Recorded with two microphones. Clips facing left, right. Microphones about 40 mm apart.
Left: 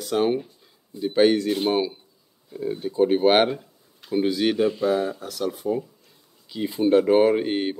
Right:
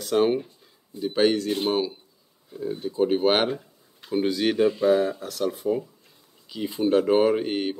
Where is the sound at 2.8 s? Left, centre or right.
Centre.